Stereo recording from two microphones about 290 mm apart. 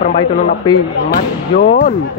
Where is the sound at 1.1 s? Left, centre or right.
Left.